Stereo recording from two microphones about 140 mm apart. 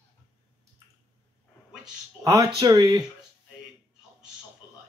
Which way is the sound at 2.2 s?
25° right (ahead or behind).